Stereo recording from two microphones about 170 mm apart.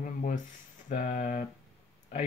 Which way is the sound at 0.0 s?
50° left (ahead or behind).